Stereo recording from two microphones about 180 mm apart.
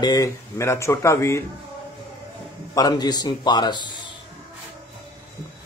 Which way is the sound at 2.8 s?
20° left (ahead or behind).